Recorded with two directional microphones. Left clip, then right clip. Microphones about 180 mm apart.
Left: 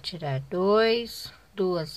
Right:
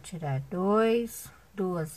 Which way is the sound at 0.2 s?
20° left (ahead or behind).